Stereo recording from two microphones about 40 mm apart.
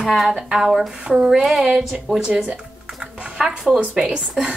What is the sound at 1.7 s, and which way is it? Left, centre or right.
Speech, centre.